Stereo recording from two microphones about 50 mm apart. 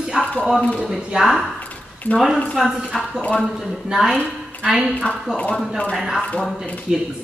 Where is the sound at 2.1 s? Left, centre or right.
Left.